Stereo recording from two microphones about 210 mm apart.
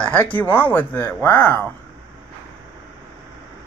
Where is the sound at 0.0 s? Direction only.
5° left (ahead or behind).